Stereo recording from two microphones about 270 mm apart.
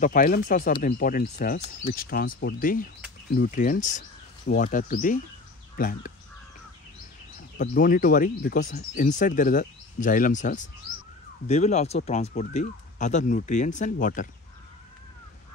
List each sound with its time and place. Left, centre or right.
0.0 s speech: left
7.5 s speech: left